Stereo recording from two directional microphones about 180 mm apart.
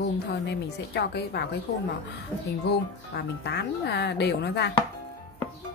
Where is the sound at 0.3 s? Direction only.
65° left (ahead or behind).